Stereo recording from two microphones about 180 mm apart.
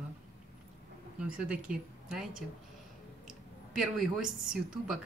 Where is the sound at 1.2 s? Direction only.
5° right (ahead or behind).